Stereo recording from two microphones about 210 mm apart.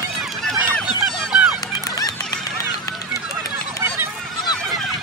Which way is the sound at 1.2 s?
Centre (ahead or behind).